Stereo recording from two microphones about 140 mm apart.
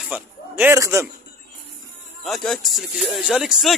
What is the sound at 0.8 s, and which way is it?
Speech, 20° right (ahead or behind).